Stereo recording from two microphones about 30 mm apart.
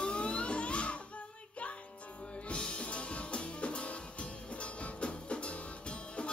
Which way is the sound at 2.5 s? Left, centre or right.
Left.